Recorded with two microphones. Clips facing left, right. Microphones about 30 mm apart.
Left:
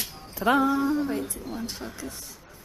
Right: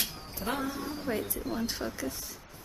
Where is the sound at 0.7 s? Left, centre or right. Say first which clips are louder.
Left 12 dB; left.